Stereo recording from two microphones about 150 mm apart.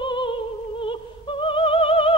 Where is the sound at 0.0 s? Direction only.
35° left (ahead or behind).